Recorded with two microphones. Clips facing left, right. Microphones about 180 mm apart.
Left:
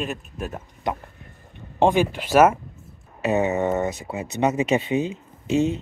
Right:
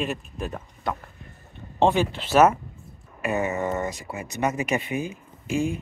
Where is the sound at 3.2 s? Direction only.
20° left (ahead or behind).